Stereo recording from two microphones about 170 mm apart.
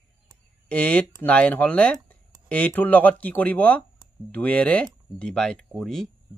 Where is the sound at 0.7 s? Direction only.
5° left (ahead or behind).